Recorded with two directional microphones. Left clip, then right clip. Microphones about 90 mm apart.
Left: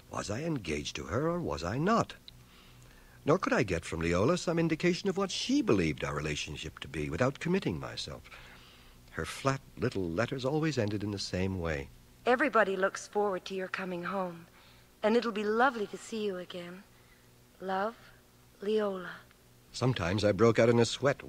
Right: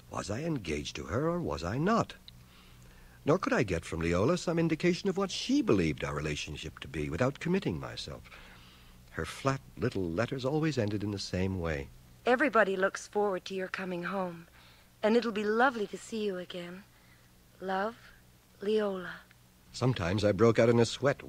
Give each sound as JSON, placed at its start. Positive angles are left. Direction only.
{"t": 0.1, "sound": "speech", "side_deg": 30}
{"t": 9.1, "sound": "speech", "side_deg": 15}
{"t": 9.8, "sound": "speech", "side_deg": 35}
{"t": 15.0, "sound": "speech", "side_deg": 40}